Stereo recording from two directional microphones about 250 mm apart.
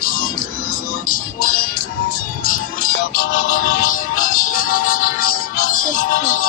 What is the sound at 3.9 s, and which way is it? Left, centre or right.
Music, left.